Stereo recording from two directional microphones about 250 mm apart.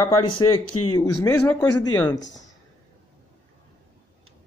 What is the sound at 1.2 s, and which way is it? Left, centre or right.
Speech, centre.